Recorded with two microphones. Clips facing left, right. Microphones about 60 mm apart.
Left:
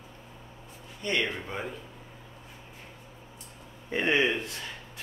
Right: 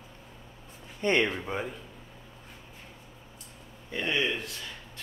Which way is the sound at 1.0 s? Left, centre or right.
Right.